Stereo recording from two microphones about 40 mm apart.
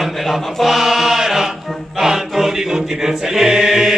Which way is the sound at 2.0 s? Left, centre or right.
Centre.